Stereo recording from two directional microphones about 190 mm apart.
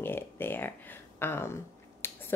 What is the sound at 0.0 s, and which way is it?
A woman's voice, 10° left (ahead or behind).